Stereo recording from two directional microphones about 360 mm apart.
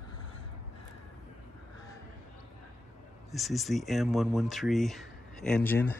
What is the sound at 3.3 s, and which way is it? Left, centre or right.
Speech, centre.